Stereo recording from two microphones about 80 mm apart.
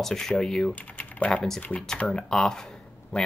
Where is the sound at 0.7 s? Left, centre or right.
Centre.